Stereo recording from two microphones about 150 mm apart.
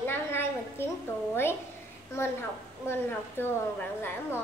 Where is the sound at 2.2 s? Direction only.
15° left (ahead or behind).